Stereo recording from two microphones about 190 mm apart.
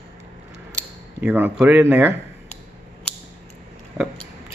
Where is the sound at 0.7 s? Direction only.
10° right (ahead or behind).